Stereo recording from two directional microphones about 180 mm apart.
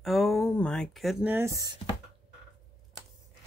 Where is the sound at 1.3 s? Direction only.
15° right (ahead or behind).